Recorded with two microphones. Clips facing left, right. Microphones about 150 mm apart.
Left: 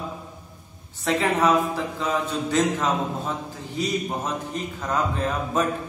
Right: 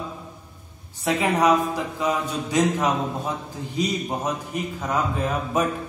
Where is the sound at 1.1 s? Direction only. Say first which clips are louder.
Right 1 dB; 15° right (ahead or behind).